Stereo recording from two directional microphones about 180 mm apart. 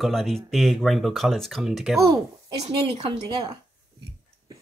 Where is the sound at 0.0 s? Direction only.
Centre (ahead or behind).